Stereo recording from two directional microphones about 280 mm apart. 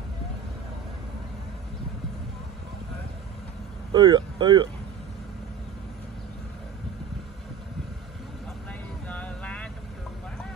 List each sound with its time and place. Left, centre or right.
3.9 s speech: centre
9.1 s vehicle: centre